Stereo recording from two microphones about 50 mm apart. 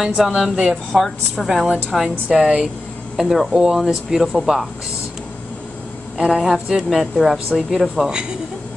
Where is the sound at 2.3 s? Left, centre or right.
Right.